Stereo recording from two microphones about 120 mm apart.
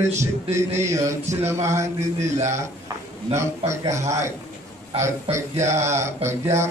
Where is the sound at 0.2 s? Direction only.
25° right (ahead or behind).